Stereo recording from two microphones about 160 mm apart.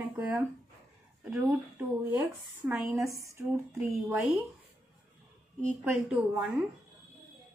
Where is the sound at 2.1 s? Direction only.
10° right (ahead or behind).